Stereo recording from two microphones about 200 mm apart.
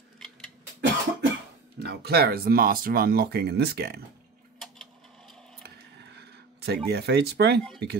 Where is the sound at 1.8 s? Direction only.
55° right (ahead or behind).